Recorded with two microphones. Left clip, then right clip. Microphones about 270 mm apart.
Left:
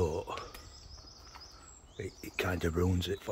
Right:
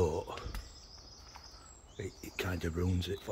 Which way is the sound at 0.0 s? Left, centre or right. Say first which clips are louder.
Even; centre.